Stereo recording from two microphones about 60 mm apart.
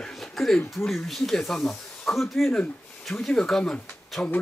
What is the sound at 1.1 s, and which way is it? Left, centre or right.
Speech, centre.